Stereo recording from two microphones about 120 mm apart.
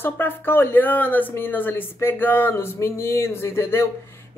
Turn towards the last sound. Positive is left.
turn(degrees=20)  # may be behind; listen again after turning